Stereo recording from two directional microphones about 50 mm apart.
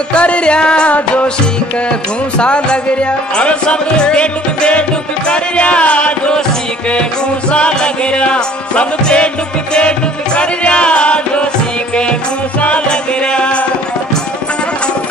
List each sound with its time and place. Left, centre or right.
0.1 s music: left